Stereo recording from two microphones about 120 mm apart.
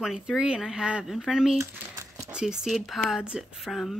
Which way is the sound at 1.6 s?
25° right (ahead or behind).